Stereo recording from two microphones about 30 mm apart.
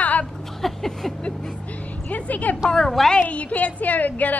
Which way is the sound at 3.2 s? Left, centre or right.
Left.